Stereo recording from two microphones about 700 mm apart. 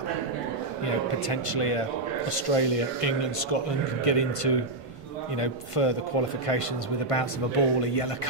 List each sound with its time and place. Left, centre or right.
0.8 s a man's voice: left
7.1 s a man's voice: left